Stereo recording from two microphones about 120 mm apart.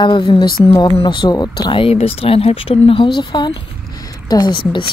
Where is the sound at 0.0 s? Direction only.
40° left (ahead or behind).